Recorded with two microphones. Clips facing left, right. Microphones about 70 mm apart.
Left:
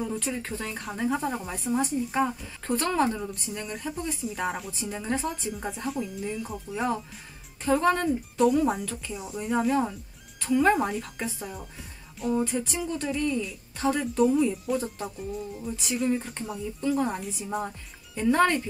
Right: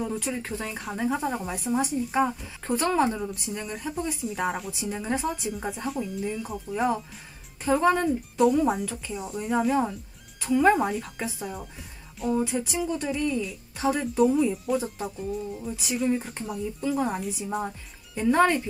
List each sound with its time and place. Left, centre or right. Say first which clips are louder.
0.0 s speech: right 1 dB; centre